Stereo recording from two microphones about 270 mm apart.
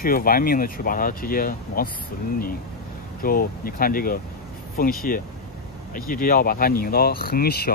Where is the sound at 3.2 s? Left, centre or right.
Left.